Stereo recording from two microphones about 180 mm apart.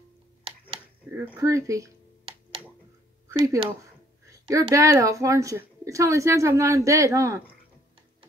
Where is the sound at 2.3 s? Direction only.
30° right (ahead or behind).